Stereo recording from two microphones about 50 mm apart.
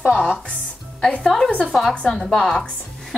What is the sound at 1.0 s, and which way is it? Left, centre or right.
A woman's voice, centre.